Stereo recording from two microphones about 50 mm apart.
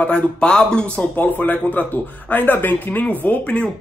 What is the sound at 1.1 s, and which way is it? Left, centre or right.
Speech, left.